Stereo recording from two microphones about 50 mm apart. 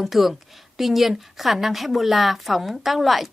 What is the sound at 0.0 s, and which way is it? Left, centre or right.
A woman's voice, centre.